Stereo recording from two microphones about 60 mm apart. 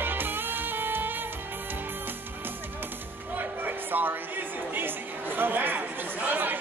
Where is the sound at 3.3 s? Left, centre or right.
Right.